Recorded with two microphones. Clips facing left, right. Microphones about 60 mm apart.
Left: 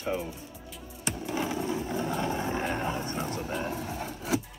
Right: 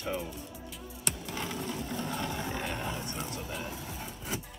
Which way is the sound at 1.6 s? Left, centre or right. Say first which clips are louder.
Left 5 dB; centre.